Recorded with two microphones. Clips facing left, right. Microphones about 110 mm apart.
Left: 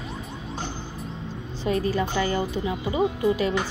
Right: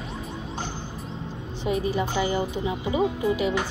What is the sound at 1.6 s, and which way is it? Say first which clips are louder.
A woman's voice: left 1 dB; 15° right (ahead or behind).